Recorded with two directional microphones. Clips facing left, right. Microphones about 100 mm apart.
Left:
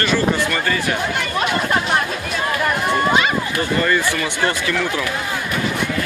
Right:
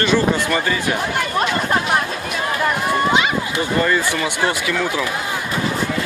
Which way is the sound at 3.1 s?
15° right (ahead or behind).